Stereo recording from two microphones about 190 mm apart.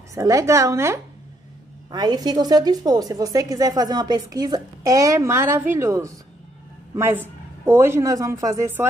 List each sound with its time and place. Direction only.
0.1 s a woman's voice: 15° right (ahead or behind)